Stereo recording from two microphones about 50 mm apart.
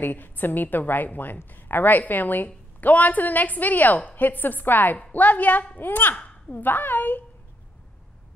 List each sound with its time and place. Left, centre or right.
0.0 s a woman's voice: left